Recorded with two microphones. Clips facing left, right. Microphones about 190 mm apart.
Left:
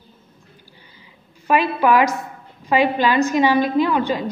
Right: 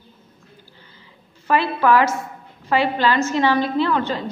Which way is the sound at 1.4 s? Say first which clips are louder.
Left 1 dB; 15° left (ahead or behind).